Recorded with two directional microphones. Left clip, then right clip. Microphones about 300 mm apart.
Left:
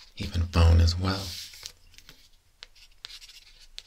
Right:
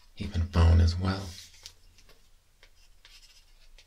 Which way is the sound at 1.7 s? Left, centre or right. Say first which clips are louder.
Left 5 dB; centre.